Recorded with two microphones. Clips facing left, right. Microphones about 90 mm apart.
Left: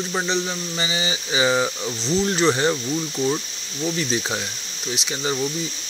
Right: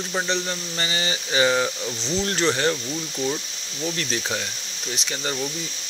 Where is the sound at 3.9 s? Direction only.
10° left (ahead or behind).